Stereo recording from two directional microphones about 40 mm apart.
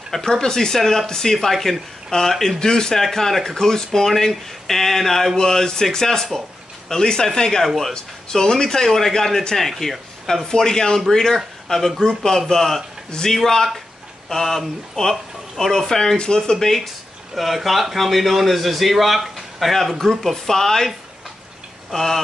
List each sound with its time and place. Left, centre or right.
0.2 s speech: centre
7.6 s a man's voice: centre
7.9 s speech: centre
16.5 s a man's voice: centre
19.7 s speech: centre
21.9 s speech: centre